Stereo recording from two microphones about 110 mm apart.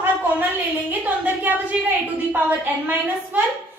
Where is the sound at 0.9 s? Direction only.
15° right (ahead or behind).